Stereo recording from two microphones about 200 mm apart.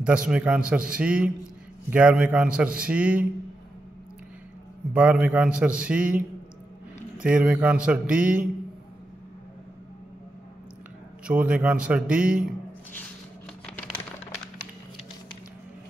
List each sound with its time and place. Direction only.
0.3 s a man's voice: 5° right (ahead or behind)
4.9 s a man's voice: 5° right (ahead or behind)
11.2 s a man's voice: 5° right (ahead or behind)
13.7 s a sound: 5° left (ahead or behind)